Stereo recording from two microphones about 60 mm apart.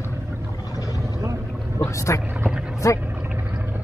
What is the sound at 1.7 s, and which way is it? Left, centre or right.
Speech, left.